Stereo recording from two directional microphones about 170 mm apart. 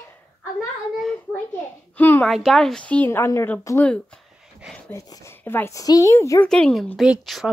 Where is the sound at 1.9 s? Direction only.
10° left (ahead or behind).